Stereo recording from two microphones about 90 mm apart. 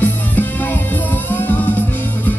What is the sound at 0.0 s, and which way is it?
Music, 20° left (ahead or behind).